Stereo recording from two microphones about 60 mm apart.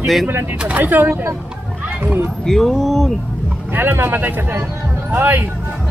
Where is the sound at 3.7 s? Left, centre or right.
Right.